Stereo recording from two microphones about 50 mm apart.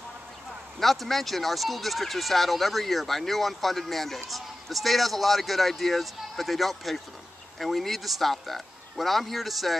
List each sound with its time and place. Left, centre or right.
0.7 s speech: centre